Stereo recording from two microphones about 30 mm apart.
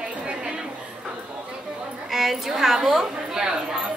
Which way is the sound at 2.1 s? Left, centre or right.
Centre.